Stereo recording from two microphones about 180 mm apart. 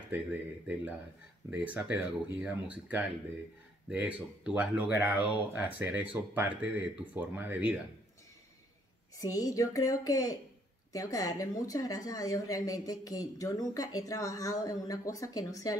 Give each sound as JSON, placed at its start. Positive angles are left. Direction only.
{"t": 0.1, "sound": "speech", "side_deg": -10}
{"t": 9.3, "sound": "speech", "side_deg": 20}